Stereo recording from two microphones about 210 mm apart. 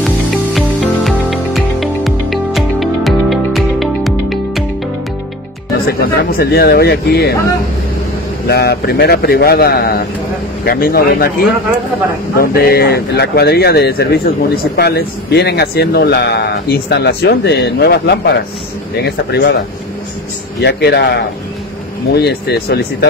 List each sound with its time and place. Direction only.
0.6 s music: centre (ahead or behind)
5.9 s speech: 45° left (ahead or behind)
8.5 s speech: 50° left (ahead or behind)
20.6 s speech: 55° left (ahead or behind)